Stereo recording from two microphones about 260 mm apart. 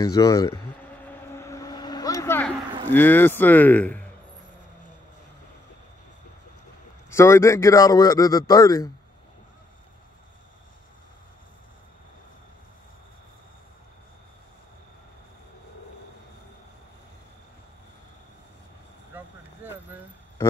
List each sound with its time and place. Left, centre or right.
0.0 s speech: centre
1.0 s vehicle: centre
2.9 s speech: centre
7.1 s speech: centre
19.1 s vehicle: centre